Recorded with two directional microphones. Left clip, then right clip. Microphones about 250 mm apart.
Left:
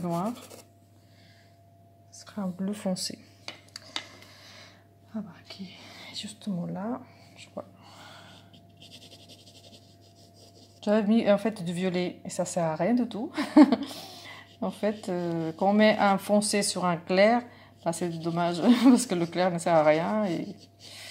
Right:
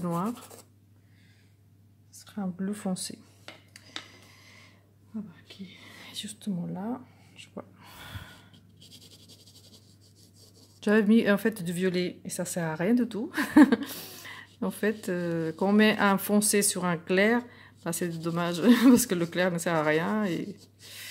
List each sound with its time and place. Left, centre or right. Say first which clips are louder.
0.0 s speech: left 1 dB; right
2.1 s speech: left 1 dB; centre
3.9 s a sound: left 4 dB; left
6.0 s speech: even; centre
7.5 s a sound: left 4 dB; right
10.8 s speech: right 1 dB; right